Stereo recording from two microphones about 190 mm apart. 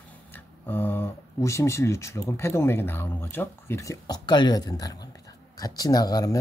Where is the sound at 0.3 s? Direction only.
10° left (ahead or behind).